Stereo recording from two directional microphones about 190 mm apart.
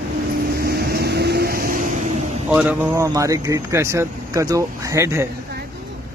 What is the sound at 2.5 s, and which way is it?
Speech, 10° right (ahead or behind).